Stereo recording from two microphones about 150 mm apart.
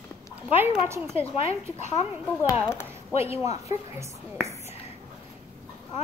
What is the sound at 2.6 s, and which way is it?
Speech, 15° left (ahead or behind).